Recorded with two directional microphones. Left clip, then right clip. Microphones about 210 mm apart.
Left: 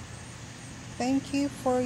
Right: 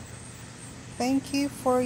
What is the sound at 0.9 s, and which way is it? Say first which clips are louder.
Speech: right 2 dB; 15° right (ahead or behind).